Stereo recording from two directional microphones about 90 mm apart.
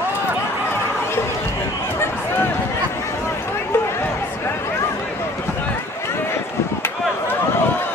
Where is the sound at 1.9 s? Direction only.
25° left (ahead or behind).